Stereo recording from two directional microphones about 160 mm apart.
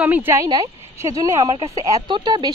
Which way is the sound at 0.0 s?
10° right (ahead or behind).